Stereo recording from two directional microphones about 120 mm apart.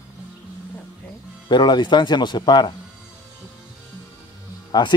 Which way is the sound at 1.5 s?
40° left (ahead or behind).